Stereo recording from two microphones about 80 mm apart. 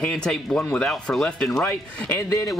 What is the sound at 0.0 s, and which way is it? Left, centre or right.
Speech, centre.